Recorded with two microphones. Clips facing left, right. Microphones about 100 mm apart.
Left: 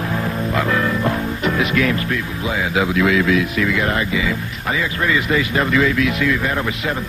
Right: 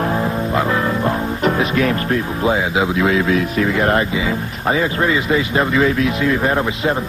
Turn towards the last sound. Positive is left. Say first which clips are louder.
# right 4 dB
turn(degrees=-30)  # may be behind; listen again after turning